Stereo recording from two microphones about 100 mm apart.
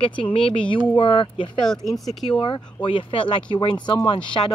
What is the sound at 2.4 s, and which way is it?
Speech, 50° left (ahead or behind).